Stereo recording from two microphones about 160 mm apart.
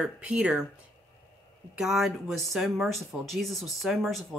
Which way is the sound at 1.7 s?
Centre (ahead or behind).